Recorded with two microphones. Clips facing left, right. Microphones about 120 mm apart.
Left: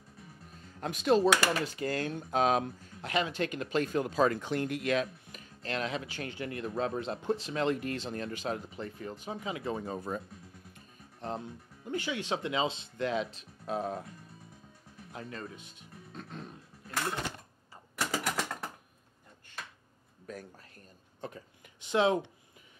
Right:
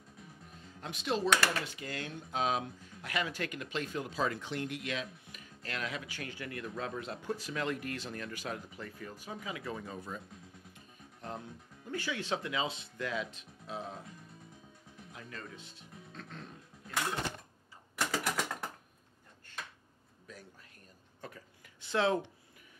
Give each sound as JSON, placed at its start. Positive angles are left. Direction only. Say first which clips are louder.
{"t": 0.7, "sound": "speech", "louder": "left 8 dB", "side_deg": 45}
{"t": 3.0, "sound": "speech", "louder": "left 5 dB", "side_deg": 25}
{"t": 3.7, "sound": "speech", "louder": "left 9 dB", "side_deg": 50}
{"t": 5.4, "sound": "speech", "louder": "left 5 dB", "side_deg": 30}
{"t": 11.1, "sound": "speech", "louder": "left 5 dB", "side_deg": 25}
{"t": 13.7, "sound": "speech", "louder": "left 8 dB", "side_deg": 50}
{"t": 15.3, "sound": "speech", "louder": "left 4 dB", "side_deg": 20}
{"t": 17.9, "sound": "a sound", "louder": "left 1 dB", "side_deg": 5}
{"t": 20.3, "sound": "speech", "louder": "left 8 dB", "side_deg": 50}
{"t": 21.2, "sound": "speech", "louder": "left 6 dB", "side_deg": 25}